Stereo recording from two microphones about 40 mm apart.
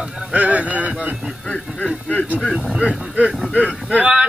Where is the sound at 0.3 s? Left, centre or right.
Right.